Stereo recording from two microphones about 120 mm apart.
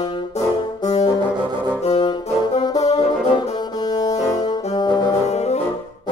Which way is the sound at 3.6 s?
35° left (ahead or behind).